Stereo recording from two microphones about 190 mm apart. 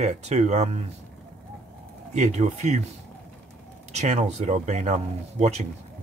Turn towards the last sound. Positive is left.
turn(degrees=-35)  # may be behind; listen again after turning